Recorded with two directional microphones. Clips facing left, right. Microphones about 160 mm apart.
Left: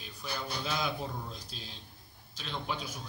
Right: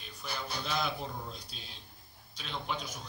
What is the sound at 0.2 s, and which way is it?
Speech, centre (ahead or behind).